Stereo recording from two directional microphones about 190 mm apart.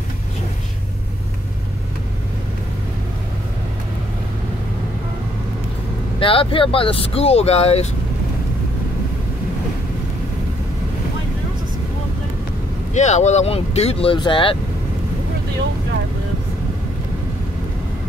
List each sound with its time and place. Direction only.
6.1 s speech: 30° left (ahead or behind)
12.9 s speech: 40° left (ahead or behind)